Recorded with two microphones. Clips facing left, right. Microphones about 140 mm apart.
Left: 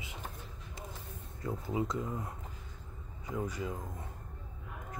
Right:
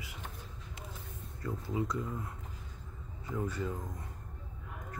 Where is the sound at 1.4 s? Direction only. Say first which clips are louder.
Left 1 dB; 20° left (ahead or behind).